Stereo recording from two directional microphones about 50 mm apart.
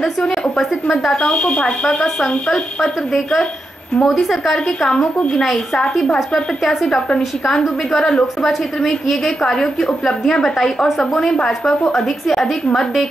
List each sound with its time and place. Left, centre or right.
0.0 s speech: centre
6.1 s a woman's voice: centre
8.4 s a woman's voice: centre